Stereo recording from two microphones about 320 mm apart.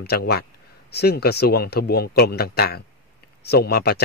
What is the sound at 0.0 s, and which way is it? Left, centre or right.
A man's voice, left.